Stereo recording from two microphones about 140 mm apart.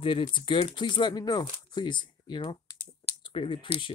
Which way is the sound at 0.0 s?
35° left (ahead or behind).